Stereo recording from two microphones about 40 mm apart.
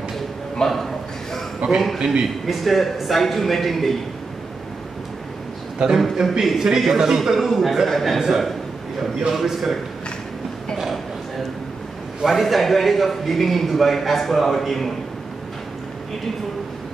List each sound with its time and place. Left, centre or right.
0.6 s a man's voice: centre
1.6 s a man's voice: right
2.0 s a man's voice: centre
2.4 s a man's voice: centre
5.8 s a man's voice: right
6.4 s a man's voice: centre
10.8 s a sound: centre
12.3 s a man's voice: centre